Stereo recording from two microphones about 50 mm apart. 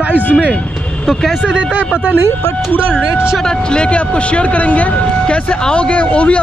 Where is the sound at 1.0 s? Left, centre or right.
Centre.